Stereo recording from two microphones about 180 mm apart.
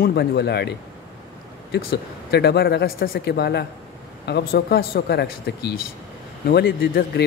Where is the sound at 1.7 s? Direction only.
65° left (ahead or behind).